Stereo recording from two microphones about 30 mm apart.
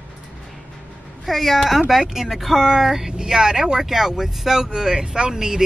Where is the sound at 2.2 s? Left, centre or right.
Centre; by 3.8 s right.